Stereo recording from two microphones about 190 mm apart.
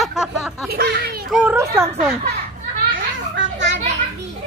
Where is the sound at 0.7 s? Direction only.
55° right (ahead or behind).